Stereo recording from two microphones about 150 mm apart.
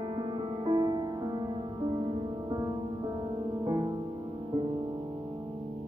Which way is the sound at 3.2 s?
30° right (ahead or behind).